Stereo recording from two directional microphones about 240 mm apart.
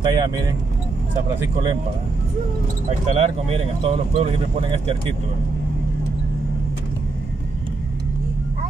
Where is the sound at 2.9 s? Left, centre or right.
Right.